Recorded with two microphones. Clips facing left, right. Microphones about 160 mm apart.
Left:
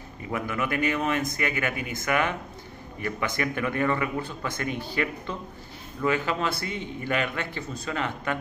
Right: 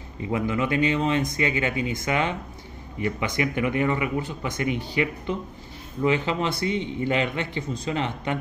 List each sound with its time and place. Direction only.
0.3 s a man's voice: 20° right (ahead or behind)